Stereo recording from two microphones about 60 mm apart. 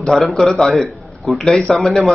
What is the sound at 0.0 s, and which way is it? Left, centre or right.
A man's voice, centre.